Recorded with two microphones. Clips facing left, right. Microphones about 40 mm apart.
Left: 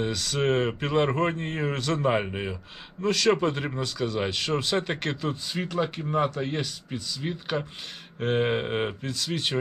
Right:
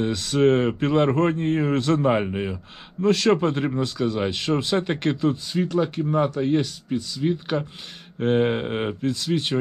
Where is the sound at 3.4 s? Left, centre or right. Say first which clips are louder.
Right 4 dB; centre.